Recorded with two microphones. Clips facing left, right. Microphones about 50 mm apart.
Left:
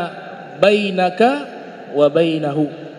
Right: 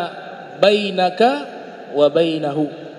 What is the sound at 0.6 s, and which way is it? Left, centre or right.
A man's voice, left.